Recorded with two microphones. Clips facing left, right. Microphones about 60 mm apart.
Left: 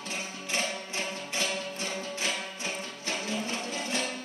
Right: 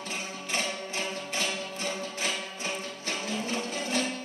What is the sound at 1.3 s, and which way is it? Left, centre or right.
Music, centre.